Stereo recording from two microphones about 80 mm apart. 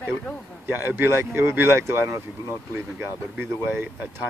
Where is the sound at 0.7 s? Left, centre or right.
Right.